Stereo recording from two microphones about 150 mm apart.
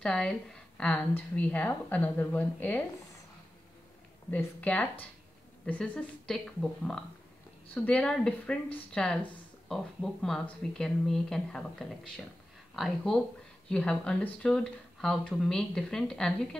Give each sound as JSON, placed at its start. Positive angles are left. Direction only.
{"t": 0.0, "sound": "a woman's voice", "side_deg": 5}
{"t": 4.3, "sound": "a woman's voice", "side_deg": 10}